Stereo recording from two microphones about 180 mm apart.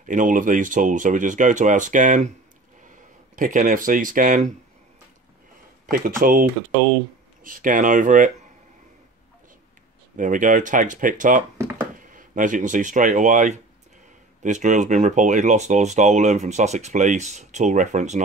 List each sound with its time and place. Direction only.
0.0 s speech: 45° right (ahead or behind)
3.3 s speech: 45° right (ahead or behind)
5.9 s speech: 50° right (ahead or behind)
10.1 s speech: 45° right (ahead or behind)